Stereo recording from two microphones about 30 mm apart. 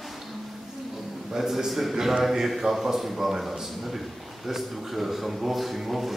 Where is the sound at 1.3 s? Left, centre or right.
Centre.